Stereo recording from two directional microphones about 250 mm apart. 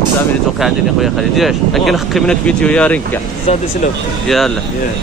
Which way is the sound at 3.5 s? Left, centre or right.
Left.